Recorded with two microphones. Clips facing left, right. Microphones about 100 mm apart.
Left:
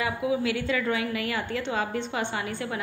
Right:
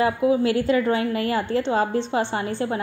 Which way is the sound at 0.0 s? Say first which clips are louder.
Right 7 dB; 35° right (ahead or behind).